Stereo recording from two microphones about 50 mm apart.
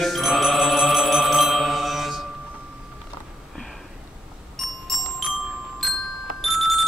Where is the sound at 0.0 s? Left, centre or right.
Centre.